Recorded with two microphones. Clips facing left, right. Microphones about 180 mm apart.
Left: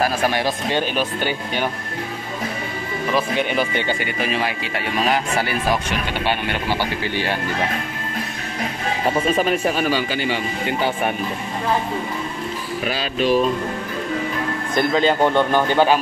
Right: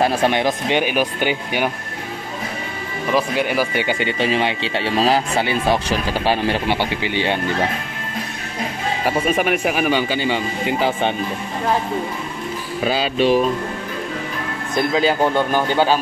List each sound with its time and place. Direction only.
0.0 s speech: 25° right (ahead or behind)
3.2 s speech: 5° right (ahead or behind)
4.0 s speech: 25° right (ahead or behind)
6.7 s speech: 20° right (ahead or behind)
9.0 s speech: 5° right (ahead or behind)
9.9 s speech: 25° right (ahead or behind)
12.8 s speech: 30° right (ahead or behind)
14.8 s speech: 5° right (ahead or behind)